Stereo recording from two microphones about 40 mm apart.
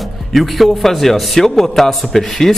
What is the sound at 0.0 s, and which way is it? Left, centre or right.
A man's voice, centre.